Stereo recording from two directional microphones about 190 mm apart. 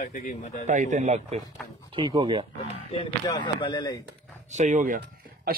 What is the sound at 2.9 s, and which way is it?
A man's voice, 25° left (ahead or behind).